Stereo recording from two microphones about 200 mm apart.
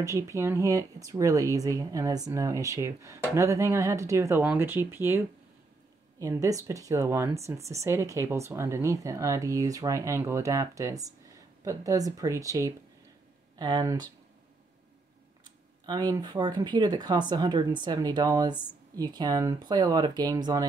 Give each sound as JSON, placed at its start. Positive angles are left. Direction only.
{"t": 0.0, "sound": "speech", "side_deg": -15}
{"t": 15.8, "sound": "speech", "side_deg": -20}